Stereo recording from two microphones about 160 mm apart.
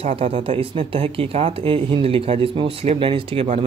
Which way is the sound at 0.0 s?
40° right (ahead or behind).